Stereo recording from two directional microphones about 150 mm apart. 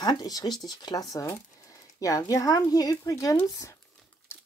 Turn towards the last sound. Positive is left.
turn(degrees=20)  # may be behind; listen again after turning